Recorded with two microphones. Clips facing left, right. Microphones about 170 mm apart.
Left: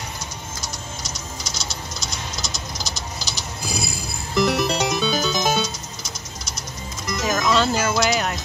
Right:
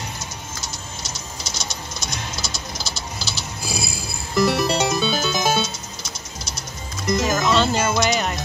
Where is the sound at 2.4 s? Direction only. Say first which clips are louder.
Even; 20° left (ahead or behind).